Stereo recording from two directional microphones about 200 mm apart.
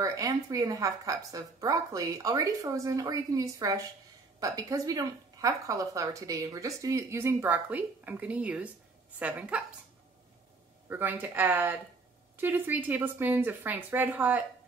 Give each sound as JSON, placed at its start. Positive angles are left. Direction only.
{"t": 0.0, "sound": "a woman's voice", "side_deg": -15}
{"t": 10.9, "sound": "a woman's voice", "side_deg": -10}